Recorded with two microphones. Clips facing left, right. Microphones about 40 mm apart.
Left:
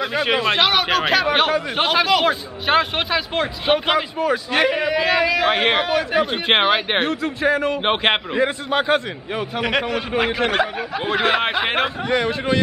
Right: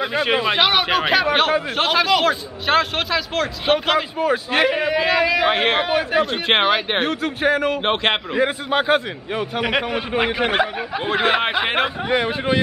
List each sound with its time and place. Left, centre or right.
0.0 s a man's voice: centre
4.2 s a man's voice: centre
7.8 s a man's voice: centre
8.4 s a man's voice: centre
12.1 s a man's voice: centre